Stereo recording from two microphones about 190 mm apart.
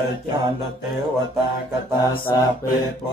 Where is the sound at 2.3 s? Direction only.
15° left (ahead or behind).